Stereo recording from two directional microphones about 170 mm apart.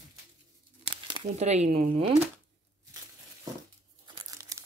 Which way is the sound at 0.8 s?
30° right (ahead or behind).